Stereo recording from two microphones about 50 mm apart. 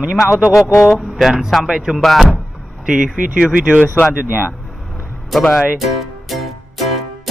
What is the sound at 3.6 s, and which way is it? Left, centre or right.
Speech, right.